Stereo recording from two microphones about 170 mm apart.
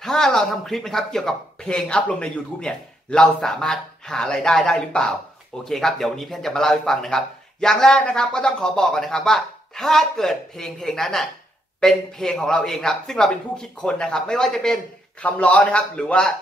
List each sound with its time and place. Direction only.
0.0 s speech: centre (ahead or behind)